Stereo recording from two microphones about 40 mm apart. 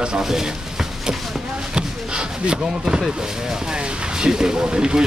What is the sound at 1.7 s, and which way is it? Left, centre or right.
Speech, right.